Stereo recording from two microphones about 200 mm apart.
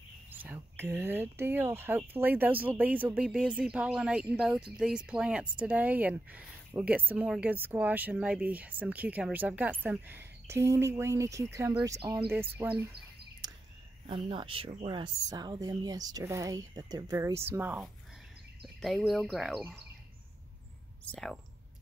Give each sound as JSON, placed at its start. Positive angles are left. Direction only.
{"t": 0.3, "sound": "speech", "side_deg": -10}
{"t": 13.4, "sound": "a sound", "side_deg": -20}
{"t": 14.0, "sound": "speech", "side_deg": -25}
{"t": 18.8, "sound": "speech", "side_deg": 0}
{"t": 21.0, "sound": "speech", "side_deg": 5}